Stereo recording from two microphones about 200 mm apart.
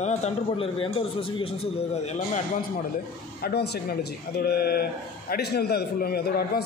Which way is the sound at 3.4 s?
55° left (ahead or behind).